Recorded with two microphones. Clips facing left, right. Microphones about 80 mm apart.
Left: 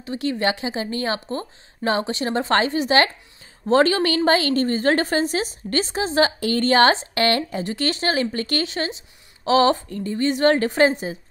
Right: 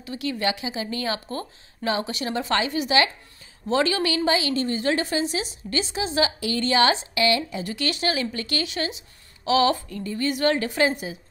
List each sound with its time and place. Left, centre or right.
0.0 s a woman's voice: left
7.6 s a woman's voice: left